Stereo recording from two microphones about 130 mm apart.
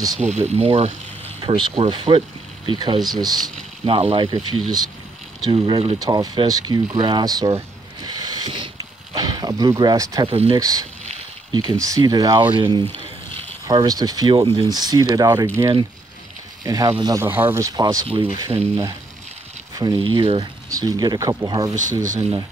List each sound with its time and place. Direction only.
0.2 s speech: 55° right (ahead or behind); by 3.4 s 30° right (ahead or behind)
3.8 s speech: 45° right (ahead or behind)
5.9 s speech: 30° right (ahead or behind)
8.7 s a sound: 35° right (ahead or behind)
10.2 s speech: 45° right (ahead or behind)
10.6 s speech: 30° right (ahead or behind)
13.8 s speech: 30° right (ahead or behind)
15.4 s speech: 20° right (ahead or behind)
17.2 s speech: 15° right (ahead or behind)
18.0 s speech: 45° right (ahead or behind)
19.7 s a sound: 30° right (ahead or behind)
20.0 s speech: 45° right (ahead or behind)
20.7 s speech: 30° right (ahead or behind)
22.0 s speech: 75° right (ahead or behind)